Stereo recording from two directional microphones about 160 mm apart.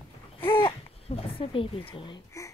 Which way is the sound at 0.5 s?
35° left (ahead or behind).